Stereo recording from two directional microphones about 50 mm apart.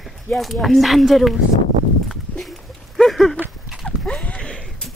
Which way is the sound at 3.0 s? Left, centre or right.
Centre.